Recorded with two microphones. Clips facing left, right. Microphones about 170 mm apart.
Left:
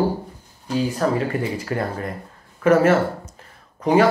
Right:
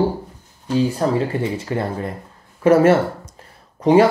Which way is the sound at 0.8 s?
30° right (ahead or behind).